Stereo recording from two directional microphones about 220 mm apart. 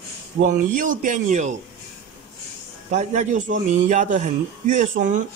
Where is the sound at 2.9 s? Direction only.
35° right (ahead or behind).